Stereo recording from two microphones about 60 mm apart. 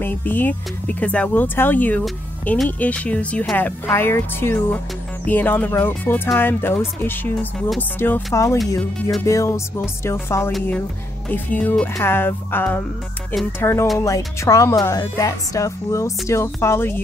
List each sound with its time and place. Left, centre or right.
0.0 s speech: left
1.3 s speech: left
3.5 s speech: left
8.3 s speech: left
11.2 s speech: left
13.6 s speech: left
13.9 s speech: left
16.6 s speech: left